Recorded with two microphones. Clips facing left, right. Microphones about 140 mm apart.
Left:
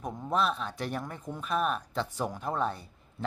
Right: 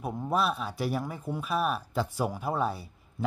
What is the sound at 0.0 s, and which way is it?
A man's voice, 10° right (ahead or behind).